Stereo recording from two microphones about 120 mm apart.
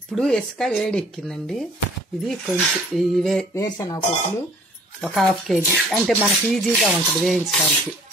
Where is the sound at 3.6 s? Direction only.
30° left (ahead or behind).